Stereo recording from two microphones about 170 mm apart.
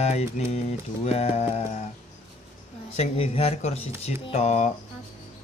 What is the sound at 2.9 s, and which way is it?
A man's voice, 40° left (ahead or behind).